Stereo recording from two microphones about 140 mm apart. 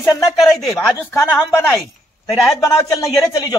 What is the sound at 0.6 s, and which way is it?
Speech, centre (ahead or behind).